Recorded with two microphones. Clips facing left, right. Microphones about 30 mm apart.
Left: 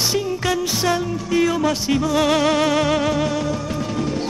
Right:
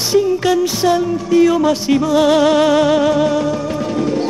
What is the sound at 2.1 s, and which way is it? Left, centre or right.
Music, centre.